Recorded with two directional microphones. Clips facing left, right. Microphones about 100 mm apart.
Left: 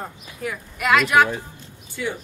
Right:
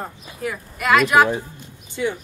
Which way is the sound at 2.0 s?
30° right (ahead or behind).